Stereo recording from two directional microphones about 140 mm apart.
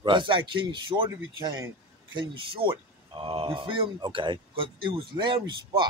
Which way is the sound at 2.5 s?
35° right (ahead or behind).